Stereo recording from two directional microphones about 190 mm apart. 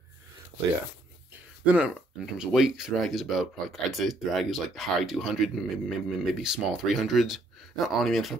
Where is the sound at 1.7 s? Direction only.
5° right (ahead or behind).